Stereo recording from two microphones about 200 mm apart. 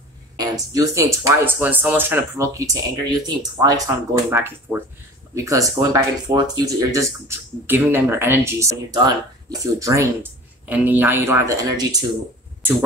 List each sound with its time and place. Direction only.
0.4 s speech: 20° right (ahead or behind)